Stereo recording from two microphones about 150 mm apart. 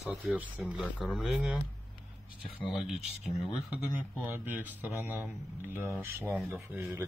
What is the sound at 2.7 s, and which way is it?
Speech, centre (ahead or behind).